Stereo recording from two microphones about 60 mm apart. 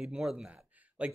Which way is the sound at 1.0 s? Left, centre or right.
Centre.